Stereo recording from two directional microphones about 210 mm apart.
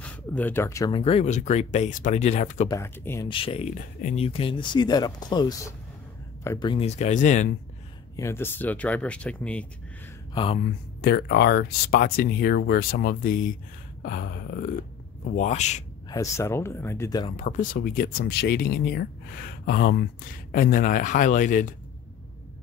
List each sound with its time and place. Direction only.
0.0 s speech: 5° left (ahead or behind); by 2.7 s 35° left (ahead or behind)
2.7 s speech: 15° left (ahead or behind)
3.3 s speech: 25° left (ahead or behind)
6.7 s speech: 30° left (ahead or behind)
8.2 s speech: 10° left (ahead or behind)
10.3 s speech: 25° left (ahead or behind)
11.0 s speech: 50° left (ahead or behind)
15.3 s speech: 35° left (ahead or behind)
16.1 s speech: 15° left (ahead or behind)
17.4 s speech: 40° left (ahead or behind)